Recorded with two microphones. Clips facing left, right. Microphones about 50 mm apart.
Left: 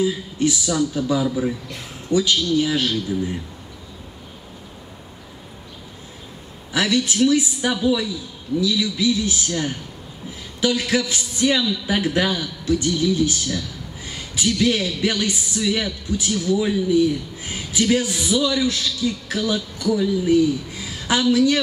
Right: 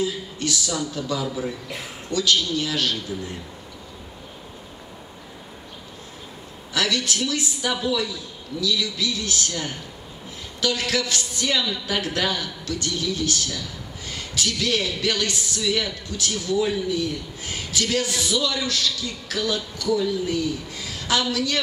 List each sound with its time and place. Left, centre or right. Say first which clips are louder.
0.0 s speech: left 6 dB; centre
6.7 s speech: left 4 dB; left
10.9 s a man's voice: left 3 dB; centre